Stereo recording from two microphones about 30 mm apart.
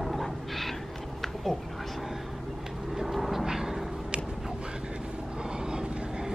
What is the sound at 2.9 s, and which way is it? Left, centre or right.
Vehicle, centre.